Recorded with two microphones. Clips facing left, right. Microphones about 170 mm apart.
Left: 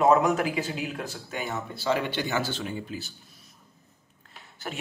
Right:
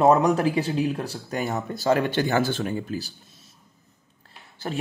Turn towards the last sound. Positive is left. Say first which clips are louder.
# right 5 dB
turn(degrees=-35)  # may be behind; listen again after turning